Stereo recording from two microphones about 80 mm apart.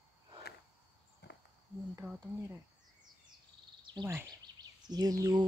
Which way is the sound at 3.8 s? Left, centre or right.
Right.